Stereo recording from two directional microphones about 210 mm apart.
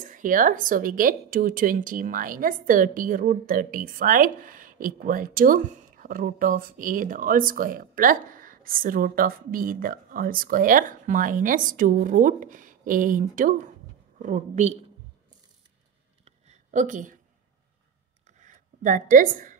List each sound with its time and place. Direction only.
0.0 s speech: 40° right (ahead or behind)
16.3 s a sound: 35° right (ahead or behind)
18.2 s writing: 35° right (ahead or behind)